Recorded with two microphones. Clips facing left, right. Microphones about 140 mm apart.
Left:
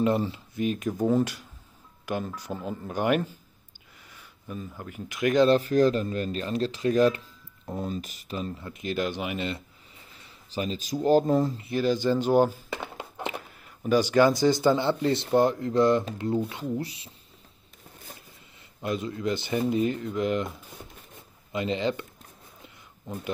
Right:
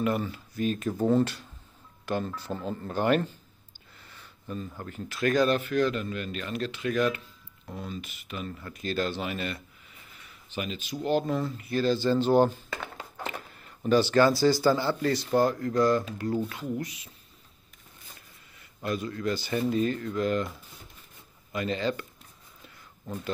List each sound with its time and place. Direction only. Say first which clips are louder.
0.0 s speech: left 4 dB; 30° left (ahead or behind)
10.2 s speech: left 4 dB; 35° left (ahead or behind)
11.6 s speech: left 1 dB; 15° left (ahead or behind)
12.7 s a sound: left 3 dB; 20° left (ahead or behind)
13.8 s speech: left 1 dB; 15° left (ahead or behind); by 17.1 s 30° left (ahead or behind)
18.8 s speech: left 1 dB; 20° left (ahead or behind)
22.6 s a sound: left 2 dB; 15° left (ahead or behind)